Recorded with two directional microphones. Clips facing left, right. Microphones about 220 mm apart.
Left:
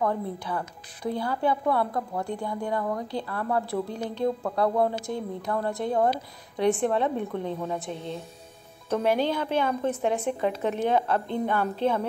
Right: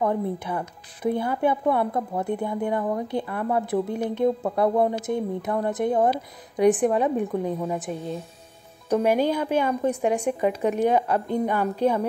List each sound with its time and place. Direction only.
0.0 s a woman's voice: 20° right (ahead or behind)